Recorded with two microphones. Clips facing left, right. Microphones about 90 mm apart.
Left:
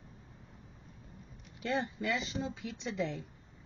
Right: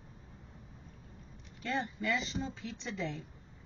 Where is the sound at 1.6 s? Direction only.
20° left (ahead or behind).